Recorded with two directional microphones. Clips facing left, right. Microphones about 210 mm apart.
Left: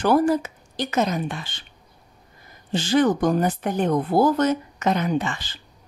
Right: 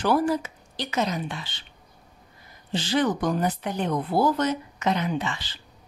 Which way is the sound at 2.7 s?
45° left (ahead or behind).